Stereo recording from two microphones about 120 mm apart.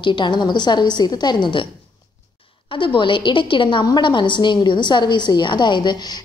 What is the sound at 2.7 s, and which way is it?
A woman's voice, 45° left (ahead or behind).